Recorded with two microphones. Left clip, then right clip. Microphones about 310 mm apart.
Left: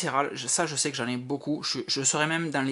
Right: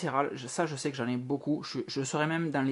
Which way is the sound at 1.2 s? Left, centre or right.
Centre.